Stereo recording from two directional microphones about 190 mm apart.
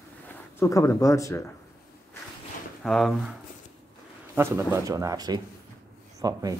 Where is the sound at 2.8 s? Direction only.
Centre (ahead or behind).